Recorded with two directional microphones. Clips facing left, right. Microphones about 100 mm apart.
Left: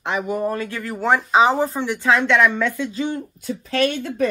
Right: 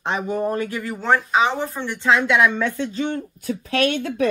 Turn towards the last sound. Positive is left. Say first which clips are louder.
# even
turn(degrees=-60)  # may be behind; listen again after turning